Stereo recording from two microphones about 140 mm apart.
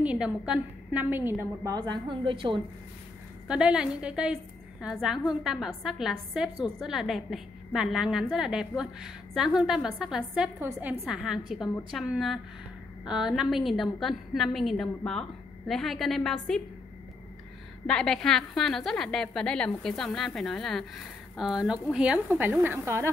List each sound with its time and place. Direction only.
0.0 s a woman's voice: 10° right (ahead or behind)
1.8 s a woman's voice: 35° right (ahead or behind)
3.4 s a woman's voice: 5° right (ahead or behind)
17.8 s a woman's voice: 5° left (ahead or behind); by 23.0 s 15° right (ahead or behind)